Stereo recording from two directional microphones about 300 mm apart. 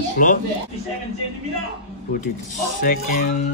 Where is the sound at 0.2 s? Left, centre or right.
Left.